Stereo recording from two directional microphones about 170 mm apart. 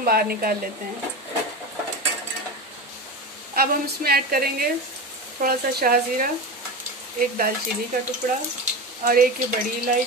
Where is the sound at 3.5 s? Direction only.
60° right (ahead or behind).